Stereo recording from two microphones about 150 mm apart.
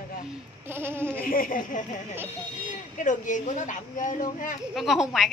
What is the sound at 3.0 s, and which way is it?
Speech, 55° left (ahead or behind).